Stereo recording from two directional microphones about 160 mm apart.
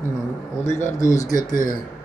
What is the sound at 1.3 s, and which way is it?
Speech, 60° left (ahead or behind).